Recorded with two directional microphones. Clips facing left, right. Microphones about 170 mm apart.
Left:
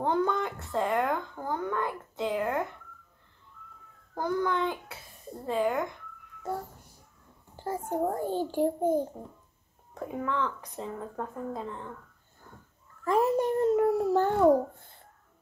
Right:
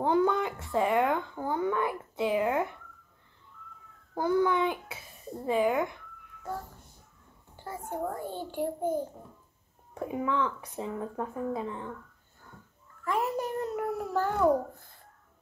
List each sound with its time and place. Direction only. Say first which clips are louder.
0.0 s speech: right 2 dB; 10° right (ahead or behind)
4.1 s speech: right 3 dB; 10° right (ahead or behind)
7.6 s a child's voice: left 5 dB; 40° left (ahead or behind)
9.9 s speech: right 2 dB; 15° right (ahead or behind)
13.0 s a child's voice: left 5 dB; 30° left (ahead or behind)